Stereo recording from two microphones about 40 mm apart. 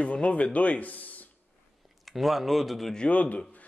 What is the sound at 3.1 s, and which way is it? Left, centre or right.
Speech, left.